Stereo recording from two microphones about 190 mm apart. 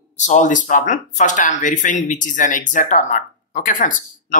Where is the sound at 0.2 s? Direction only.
40° left (ahead or behind).